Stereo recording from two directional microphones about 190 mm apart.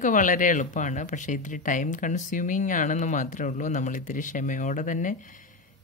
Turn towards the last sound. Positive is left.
turn(degrees=45)  # may be behind; listen again after turning